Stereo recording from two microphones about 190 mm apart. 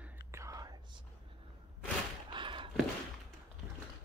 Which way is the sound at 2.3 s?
25° right (ahead or behind).